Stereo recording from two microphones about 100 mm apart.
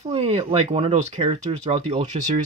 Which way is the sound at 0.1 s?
75° right (ahead or behind).